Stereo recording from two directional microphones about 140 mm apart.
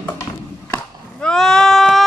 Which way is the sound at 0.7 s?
10° left (ahead or behind).